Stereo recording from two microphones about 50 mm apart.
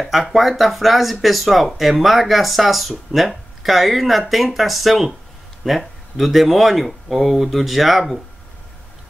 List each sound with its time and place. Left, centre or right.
0.0 s speech: centre